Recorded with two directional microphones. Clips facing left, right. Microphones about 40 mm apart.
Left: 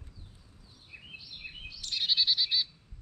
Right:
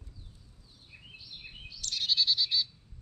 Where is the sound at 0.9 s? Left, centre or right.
Centre.